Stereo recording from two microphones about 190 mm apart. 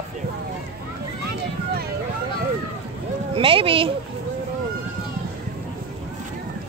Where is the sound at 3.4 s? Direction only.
30° right (ahead or behind).